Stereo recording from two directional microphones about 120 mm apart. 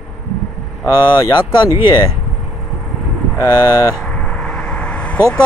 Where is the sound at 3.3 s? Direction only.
25° left (ahead or behind).